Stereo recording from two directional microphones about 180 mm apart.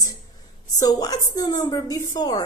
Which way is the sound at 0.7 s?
20° left (ahead or behind).